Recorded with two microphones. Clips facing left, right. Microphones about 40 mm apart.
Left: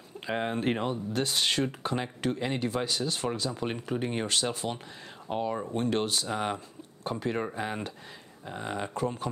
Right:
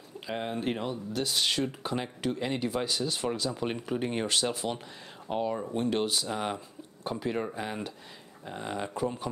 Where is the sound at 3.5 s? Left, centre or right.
Centre.